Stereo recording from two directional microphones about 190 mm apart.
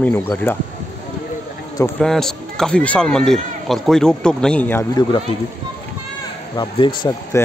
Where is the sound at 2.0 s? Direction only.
Centre (ahead or behind).